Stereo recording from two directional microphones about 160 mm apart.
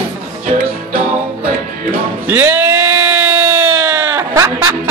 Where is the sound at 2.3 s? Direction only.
10° right (ahead or behind).